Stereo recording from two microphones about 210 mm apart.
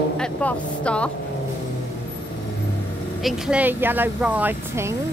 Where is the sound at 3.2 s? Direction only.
5° right (ahead or behind).